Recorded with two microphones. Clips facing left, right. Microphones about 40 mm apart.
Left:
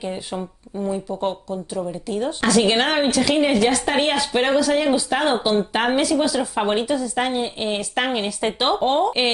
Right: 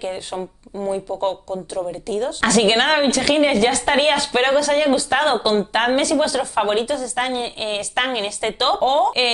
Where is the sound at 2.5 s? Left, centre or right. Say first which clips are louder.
Right 2 dB; centre.